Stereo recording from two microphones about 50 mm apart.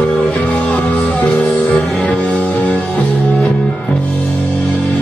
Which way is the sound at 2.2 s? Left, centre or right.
Left.